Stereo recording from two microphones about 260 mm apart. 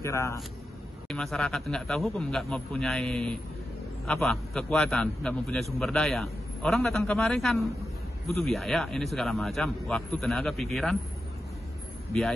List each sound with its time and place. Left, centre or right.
0.0 s a man's voice: centre
12.1 s a man's voice: centre